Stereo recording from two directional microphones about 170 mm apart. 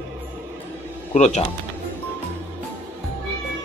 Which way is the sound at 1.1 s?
40° left (ahead or behind).